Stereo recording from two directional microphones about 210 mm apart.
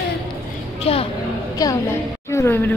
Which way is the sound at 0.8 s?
30° left (ahead or behind).